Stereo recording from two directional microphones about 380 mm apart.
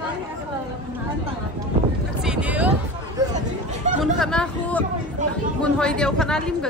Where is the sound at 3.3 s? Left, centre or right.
Centre.